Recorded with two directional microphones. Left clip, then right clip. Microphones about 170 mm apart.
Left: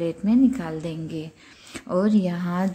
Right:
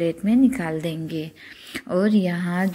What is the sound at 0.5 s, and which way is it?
A woman's voice, 20° right (ahead or behind).